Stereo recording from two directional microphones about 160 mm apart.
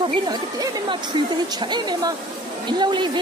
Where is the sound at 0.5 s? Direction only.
25° right (ahead or behind).